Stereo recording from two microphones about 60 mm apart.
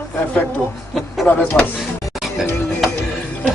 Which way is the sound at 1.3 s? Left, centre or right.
Left.